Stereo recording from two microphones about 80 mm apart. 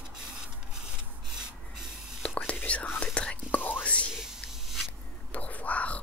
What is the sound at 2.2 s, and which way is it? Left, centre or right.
Whispering, centre.